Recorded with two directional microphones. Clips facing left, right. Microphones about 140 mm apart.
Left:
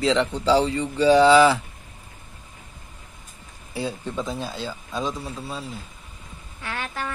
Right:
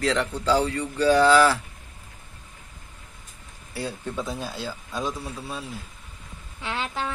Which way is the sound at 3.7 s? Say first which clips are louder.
Left 2 dB; centre (ahead or behind).